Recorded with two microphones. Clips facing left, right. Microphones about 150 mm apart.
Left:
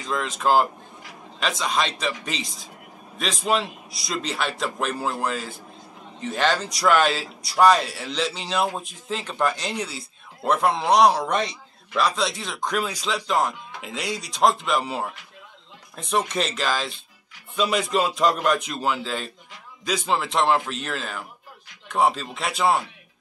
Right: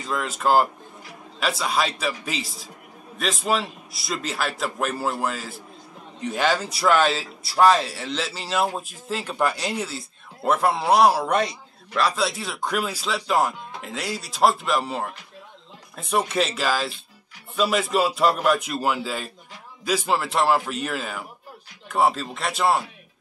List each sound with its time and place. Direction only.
0.1 s a man's voice: 5° right (ahead or behind)